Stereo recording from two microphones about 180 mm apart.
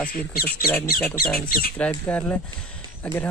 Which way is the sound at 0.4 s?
55° left (ahead or behind).